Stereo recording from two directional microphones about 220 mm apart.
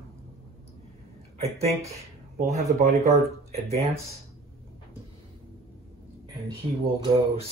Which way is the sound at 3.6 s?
30° right (ahead or behind).